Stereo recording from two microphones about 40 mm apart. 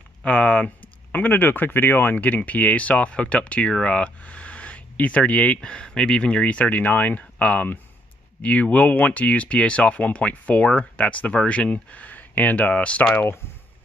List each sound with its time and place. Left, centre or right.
0.2 s speech: left
0.7 s speech: left
2.1 s speech: left
5.6 s speech: left
12.7 s speech: left